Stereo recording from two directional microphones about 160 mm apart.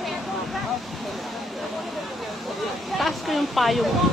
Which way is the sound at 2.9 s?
Centre (ahead or behind).